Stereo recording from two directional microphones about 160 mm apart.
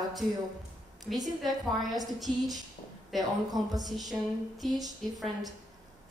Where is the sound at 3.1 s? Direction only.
Centre (ahead or behind).